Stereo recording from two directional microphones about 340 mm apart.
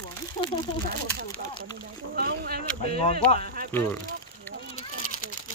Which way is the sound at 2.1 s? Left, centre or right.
Right.